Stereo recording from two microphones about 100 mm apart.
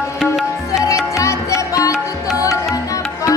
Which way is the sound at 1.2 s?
30° left (ahead or behind).